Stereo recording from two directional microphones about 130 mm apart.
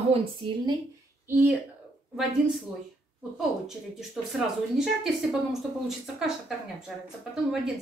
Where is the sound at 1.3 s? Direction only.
15° right (ahead or behind).